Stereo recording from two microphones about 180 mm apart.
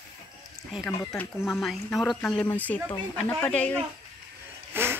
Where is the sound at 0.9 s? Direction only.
15° left (ahead or behind).